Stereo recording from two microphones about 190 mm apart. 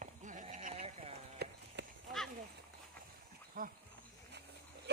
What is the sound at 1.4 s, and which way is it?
Run, 60° right (ahead or behind).